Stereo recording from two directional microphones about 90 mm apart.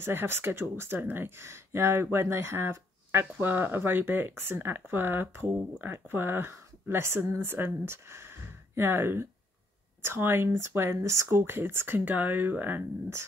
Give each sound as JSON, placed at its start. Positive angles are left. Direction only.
{"t": 0.1, "sound": "speech", "side_deg": -25}